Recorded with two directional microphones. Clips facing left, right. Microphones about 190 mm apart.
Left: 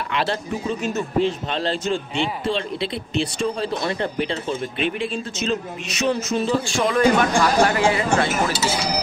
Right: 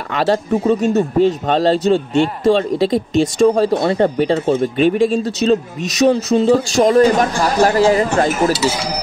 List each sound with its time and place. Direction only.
0.1 s speech: 40° right (ahead or behind)